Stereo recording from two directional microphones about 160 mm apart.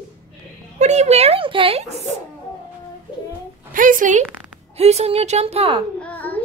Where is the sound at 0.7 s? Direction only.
45° right (ahead or behind).